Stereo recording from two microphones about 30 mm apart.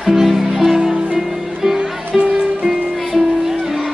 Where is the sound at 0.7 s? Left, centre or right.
Centre.